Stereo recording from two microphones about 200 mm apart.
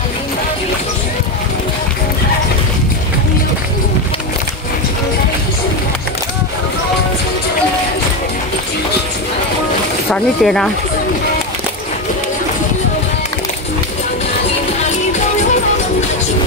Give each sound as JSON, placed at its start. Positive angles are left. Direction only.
{"t": 10.1, "sound": "speech", "side_deg": 5}